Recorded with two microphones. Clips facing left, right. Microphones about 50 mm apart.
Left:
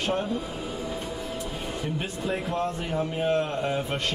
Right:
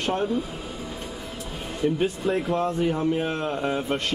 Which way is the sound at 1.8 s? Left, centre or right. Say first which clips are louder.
Right 10 dB; centre.